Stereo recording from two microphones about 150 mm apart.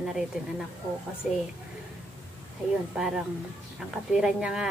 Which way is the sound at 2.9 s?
5° right (ahead or behind).